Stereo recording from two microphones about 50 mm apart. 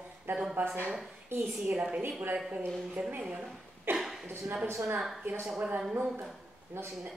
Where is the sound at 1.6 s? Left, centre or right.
Right.